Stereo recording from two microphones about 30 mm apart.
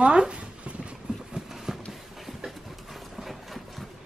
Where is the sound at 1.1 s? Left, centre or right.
Right.